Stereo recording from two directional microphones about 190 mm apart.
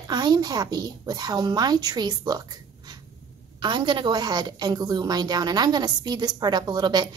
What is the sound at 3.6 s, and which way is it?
A woman's voice, 25° right (ahead or behind).